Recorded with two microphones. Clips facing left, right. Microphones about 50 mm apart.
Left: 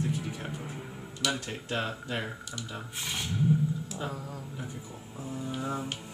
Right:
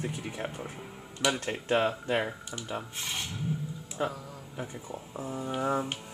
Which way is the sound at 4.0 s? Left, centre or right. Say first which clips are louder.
Right 7 dB; right.